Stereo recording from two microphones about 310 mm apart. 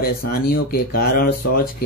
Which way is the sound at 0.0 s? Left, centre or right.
Left.